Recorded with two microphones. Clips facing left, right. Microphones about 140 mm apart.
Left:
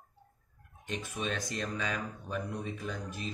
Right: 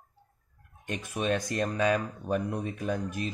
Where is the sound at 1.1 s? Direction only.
55° right (ahead or behind).